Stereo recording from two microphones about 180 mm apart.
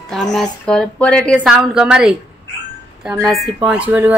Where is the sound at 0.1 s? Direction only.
Centre (ahead or behind).